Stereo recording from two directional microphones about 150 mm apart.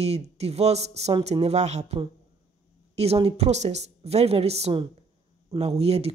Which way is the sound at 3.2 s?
45° right (ahead or behind).